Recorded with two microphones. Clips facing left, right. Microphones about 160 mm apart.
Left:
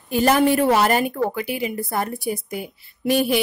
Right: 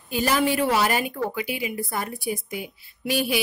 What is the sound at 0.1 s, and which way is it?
A woman's voice, 50° left (ahead or behind).